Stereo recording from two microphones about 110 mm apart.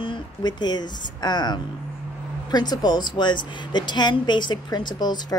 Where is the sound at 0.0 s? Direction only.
45° left (ahead or behind).